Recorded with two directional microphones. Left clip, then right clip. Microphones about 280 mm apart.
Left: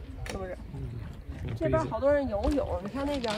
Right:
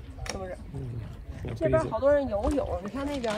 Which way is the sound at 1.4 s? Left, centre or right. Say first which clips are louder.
Right 3 dB; centre.